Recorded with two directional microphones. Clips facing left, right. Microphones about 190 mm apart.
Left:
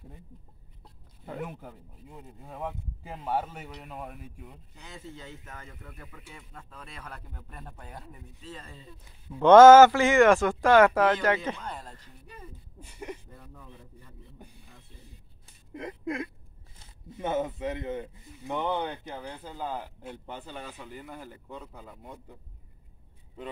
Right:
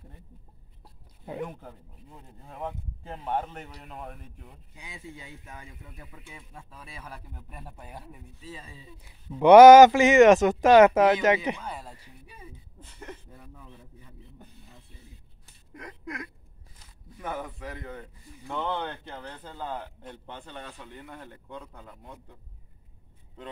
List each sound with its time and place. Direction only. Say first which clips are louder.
1.4 s speech: right 2 dB; 5° left (ahead or behind)
4.7 s speech: right 1 dB; 10° right (ahead or behind)
12.8 s speech: left 4 dB; 10° left (ahead or behind)
13.3 s speech: even; 5° right (ahead or behind)
15.7 s a sound: left 6 dB; 25° left (ahead or behind)
16.7 s speech: left 6 dB; 25° left (ahead or behind); by 22.4 s 10° left (ahead or behind)